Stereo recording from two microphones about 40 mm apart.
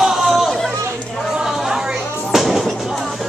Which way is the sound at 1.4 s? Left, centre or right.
Centre.